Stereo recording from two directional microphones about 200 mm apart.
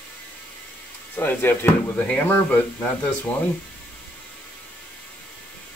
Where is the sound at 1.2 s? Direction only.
10° left (ahead or behind).